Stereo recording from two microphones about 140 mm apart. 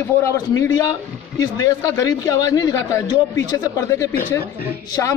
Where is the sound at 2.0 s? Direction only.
25° left (ahead or behind).